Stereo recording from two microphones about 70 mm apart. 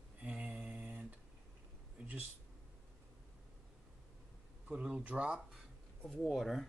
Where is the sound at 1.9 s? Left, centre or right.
Right.